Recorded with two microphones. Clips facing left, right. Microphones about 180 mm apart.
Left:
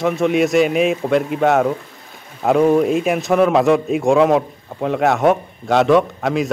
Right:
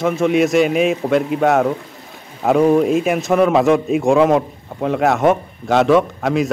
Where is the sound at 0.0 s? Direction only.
Centre (ahead or behind).